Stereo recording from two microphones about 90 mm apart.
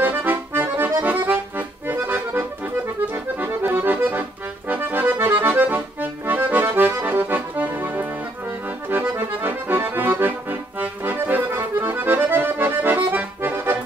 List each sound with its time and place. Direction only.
0.0 s accordion: 20° right (ahead or behind)